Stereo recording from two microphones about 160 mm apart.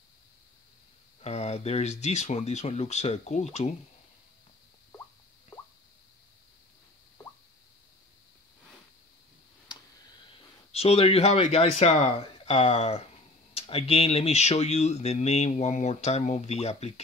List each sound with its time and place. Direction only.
1.2 s speech: 40° left (ahead or behind)
10.7 s speech: 40° left (ahead or behind)